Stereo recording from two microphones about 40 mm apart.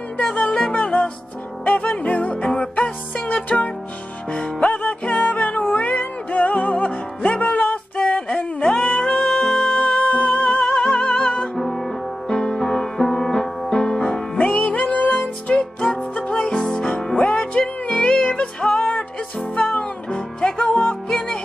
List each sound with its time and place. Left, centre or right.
0.3 s music: left
1.6 s music: left
2.4 s music: left
3.3 s music: left
11.5 s music: centre; by 14.6 s left
14.7 s music: left
15.5 s music: left
20.3 s music: left